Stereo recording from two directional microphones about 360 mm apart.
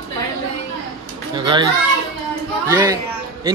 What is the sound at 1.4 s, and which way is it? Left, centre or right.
Speech, centre.